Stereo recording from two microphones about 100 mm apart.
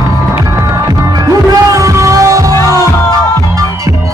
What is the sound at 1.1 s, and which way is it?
Music, 35° right (ahead or behind).